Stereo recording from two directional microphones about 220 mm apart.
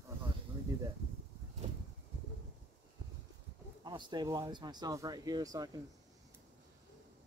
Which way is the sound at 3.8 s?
20° right (ahead or behind).